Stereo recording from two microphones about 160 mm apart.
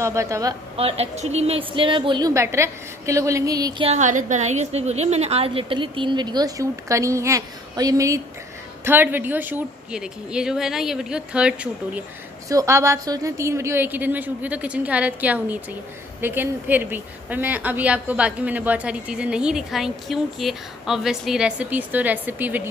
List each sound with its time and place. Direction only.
0.0 s a woman's voice: 20° right (ahead or behind)
0.7 s a woman's voice: 40° right (ahead or behind); by 3.8 s 20° right (ahead or behind)
3.8 s a woman's voice: 45° right (ahead or behind); by 12.0 s 5° right (ahead or behind)
12.4 s a woman's voice: 20° right (ahead or behind)